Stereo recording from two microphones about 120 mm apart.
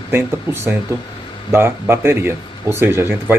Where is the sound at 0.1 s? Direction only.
20° right (ahead or behind).